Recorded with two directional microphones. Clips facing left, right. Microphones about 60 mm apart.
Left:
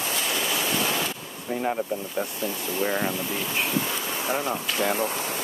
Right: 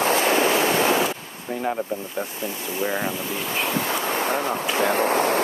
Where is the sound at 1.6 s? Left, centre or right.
Centre.